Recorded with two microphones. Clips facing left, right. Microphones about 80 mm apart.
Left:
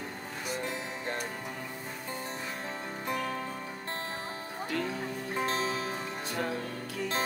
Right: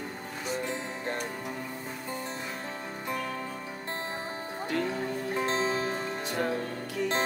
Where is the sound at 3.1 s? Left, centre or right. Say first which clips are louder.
Left 1 dB; centre.